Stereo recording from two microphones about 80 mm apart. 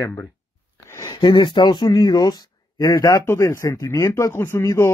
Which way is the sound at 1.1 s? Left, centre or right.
Left.